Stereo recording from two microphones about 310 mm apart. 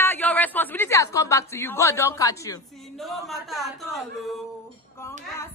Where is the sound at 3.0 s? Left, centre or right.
Centre.